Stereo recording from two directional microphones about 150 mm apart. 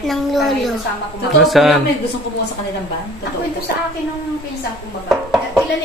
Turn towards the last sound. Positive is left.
turn(degrees=0)  # may be behind; listen again after turning